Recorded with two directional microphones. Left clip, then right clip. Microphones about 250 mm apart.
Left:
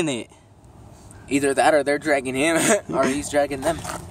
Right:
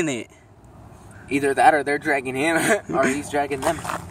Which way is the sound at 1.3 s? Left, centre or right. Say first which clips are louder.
Right 1 dB; left.